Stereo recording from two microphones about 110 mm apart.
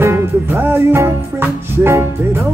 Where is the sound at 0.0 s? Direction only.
20° right (ahead or behind).